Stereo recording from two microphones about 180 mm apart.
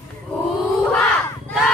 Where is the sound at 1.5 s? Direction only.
5° left (ahead or behind).